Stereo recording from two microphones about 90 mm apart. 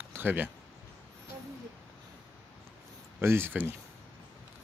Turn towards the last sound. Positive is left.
turn(degrees=-25)  # may be behind; listen again after turning